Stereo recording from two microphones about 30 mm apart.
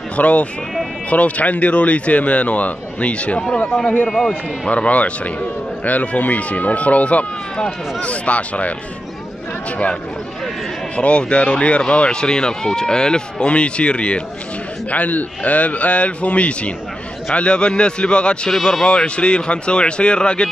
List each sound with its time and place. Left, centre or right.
0.1 s speech: left
4.6 s speech: left
5.9 s speech: left
11.0 s speech: left
12.1 s speech: left
14.9 s speech: left
17.3 s speech: left
18.6 s a man's voice: centre
18.9 s speech: left